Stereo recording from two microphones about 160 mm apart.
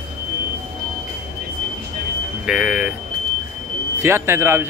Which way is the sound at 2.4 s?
5° right (ahead or behind).